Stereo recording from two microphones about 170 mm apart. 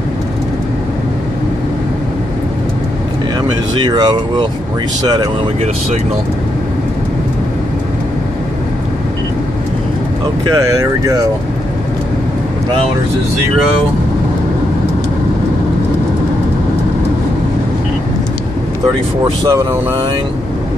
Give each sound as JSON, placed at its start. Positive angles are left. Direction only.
{"t": 3.8, "sound": "speech", "side_deg": -25}
{"t": 10.5, "sound": "speech", "side_deg": -15}
{"t": 19.4, "sound": "speech", "side_deg": -20}